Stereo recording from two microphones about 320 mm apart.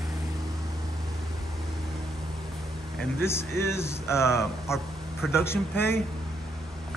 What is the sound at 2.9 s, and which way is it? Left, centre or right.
A man's voice, centre.